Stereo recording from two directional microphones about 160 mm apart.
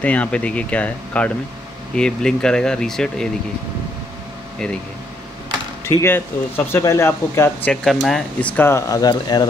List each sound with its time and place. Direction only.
0.0 s speech: 10° left (ahead or behind)
5.9 s speech: 15° left (ahead or behind)
7.7 s speech: centre (ahead or behind); by 9.5 s 25° left (ahead or behind)